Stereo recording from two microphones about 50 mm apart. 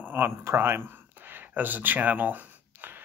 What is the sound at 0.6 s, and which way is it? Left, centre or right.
Speech, right.